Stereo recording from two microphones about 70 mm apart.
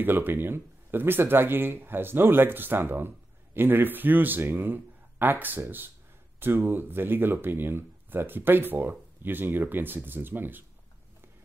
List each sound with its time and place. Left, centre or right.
0.0 s speech: right